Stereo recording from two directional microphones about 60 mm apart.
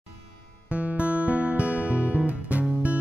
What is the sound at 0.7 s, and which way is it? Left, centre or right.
Music, right.